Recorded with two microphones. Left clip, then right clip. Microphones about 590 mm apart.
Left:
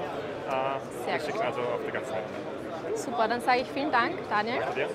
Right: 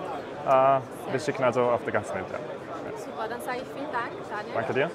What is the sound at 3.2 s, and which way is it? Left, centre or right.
A woman's voice, left.